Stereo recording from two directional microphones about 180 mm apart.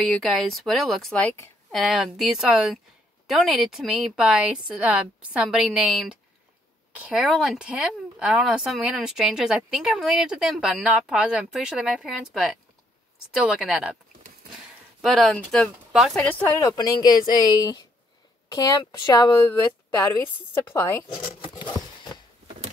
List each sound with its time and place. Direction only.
0.0 s speech: centre (ahead or behind)
16.2 s a woman's voice: 10° left (ahead or behind)
21.4 s a sound: 25° left (ahead or behind)